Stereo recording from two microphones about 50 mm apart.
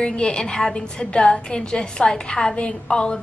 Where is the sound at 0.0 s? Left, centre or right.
Centre.